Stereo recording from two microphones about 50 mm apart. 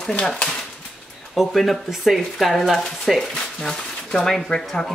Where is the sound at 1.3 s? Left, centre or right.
Centre.